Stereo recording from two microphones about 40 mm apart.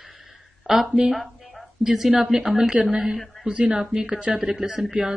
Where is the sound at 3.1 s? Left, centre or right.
Centre.